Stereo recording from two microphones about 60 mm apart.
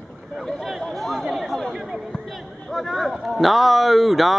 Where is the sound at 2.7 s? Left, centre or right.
Centre.